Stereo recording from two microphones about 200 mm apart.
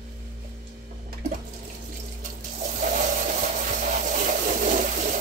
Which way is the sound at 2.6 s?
40° right (ahead or behind).